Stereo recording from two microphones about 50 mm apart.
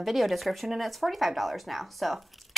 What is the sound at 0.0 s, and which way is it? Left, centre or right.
A woman's voice, centre.